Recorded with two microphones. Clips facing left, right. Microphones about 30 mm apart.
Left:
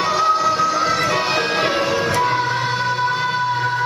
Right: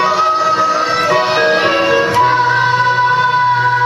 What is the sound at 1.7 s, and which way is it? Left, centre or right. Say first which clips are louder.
Music: right 7 dB; right.